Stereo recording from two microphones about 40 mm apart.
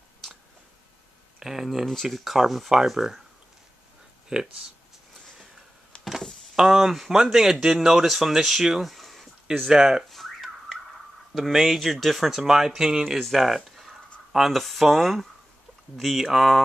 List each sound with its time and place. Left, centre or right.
1.4 s speech: centre
4.3 s speech: centre
5.9 s power windows: left
6.5 s speech: centre
9.5 s speech: centre
10.0 s car alarm: centre
11.3 s speech: centre
12.4 s speech: centre
13.7 s writing: centre
14.3 s speech: centre